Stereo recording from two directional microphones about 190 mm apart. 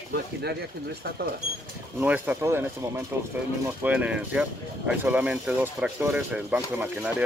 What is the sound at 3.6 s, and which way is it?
Speech, 10° right (ahead or behind).